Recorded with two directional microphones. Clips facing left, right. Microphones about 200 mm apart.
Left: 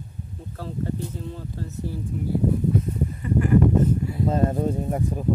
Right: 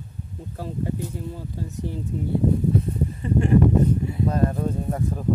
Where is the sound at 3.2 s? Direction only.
25° right (ahead or behind).